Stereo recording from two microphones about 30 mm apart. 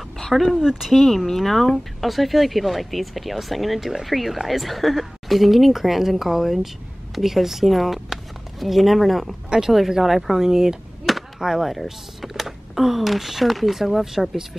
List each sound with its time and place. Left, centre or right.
0.6 s speech: centre
0.9 s speech: centre
10.4 s speech: centre
11.6 s speech: centre